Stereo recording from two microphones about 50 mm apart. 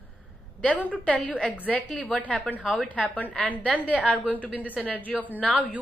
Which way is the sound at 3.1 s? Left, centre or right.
Left.